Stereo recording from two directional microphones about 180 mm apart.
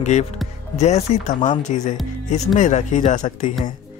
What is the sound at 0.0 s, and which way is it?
Speech, 40° left (ahead or behind).